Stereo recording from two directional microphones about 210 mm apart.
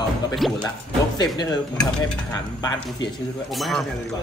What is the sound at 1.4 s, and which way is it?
Speech, 20° left (ahead or behind).